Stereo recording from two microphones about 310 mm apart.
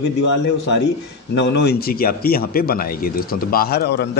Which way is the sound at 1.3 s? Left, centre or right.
Left.